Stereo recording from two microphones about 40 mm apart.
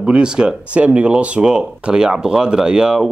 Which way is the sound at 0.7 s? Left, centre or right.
Right.